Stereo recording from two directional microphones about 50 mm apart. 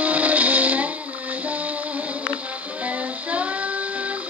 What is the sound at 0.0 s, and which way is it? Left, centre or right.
Music, right.